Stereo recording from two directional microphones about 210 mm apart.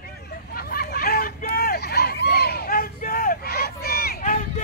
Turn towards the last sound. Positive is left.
turn(degrees=40)  # may be behind; listen again after turning